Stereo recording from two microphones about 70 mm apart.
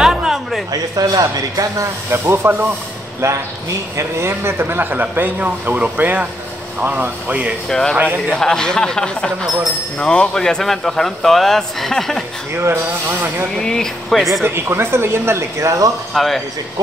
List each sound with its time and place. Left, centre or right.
0.0 s a sound: centre
0.9 s speech: right
2.0 s speech: right
3.9 s speech: right
8.4 s a man's voice: centre
13.6 s a man's voice: centre
14.4 s speech: right
16.1 s a man's voice: centre